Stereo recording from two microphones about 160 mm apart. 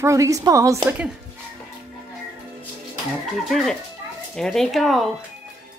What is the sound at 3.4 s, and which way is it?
Speech, centre (ahead or behind).